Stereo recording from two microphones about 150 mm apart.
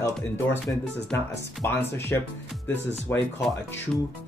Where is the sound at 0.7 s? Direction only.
15° left (ahead or behind).